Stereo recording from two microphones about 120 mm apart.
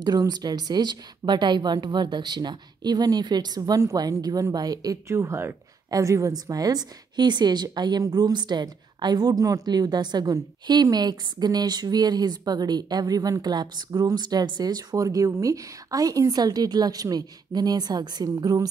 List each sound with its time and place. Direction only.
0.0 s a woman's voice: 35° right (ahead or behind)